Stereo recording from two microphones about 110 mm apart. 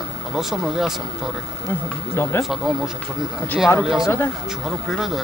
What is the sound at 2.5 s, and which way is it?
Speech, 5° right (ahead or behind).